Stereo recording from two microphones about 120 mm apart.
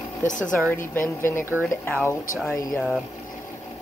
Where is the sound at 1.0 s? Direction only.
20° left (ahead or behind).